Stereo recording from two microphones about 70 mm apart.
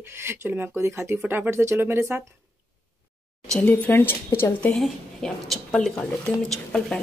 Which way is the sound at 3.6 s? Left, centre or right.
Left.